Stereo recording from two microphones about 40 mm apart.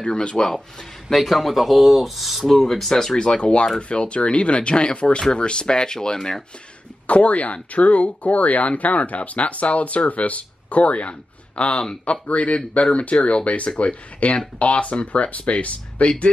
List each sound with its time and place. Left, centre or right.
0.0 s speech: left
1.1 s speech: centre
3.2 s speech: left
7.1 s speech: left